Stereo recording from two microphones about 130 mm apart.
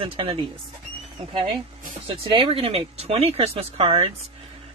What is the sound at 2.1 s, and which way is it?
Speech, 45° right (ahead or behind).